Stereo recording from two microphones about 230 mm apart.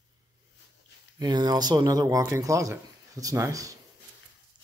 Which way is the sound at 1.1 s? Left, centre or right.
Centre.